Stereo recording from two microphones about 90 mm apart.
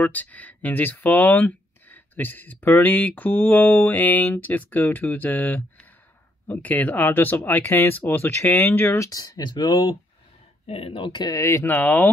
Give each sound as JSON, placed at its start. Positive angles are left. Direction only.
{"t": 0.0, "sound": "speech", "side_deg": 15}
{"t": 10.8, "sound": "speech", "side_deg": 75}
{"t": 11.2, "sound": "speech", "side_deg": 35}